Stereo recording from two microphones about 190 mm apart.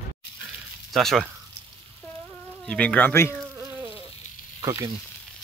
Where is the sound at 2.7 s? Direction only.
5° left (ahead or behind).